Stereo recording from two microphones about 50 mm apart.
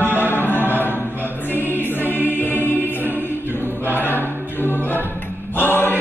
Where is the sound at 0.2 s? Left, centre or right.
Left.